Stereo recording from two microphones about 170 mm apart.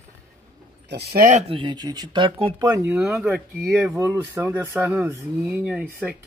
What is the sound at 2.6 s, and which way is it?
Speech, 20° right (ahead or behind).